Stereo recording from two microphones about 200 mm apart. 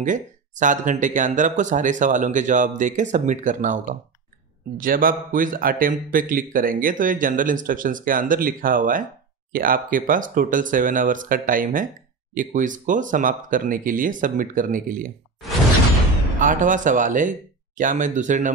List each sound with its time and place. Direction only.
0.0 s a man's voice: 40° right (ahead or behind)
16.3 s speech: 40° right (ahead or behind)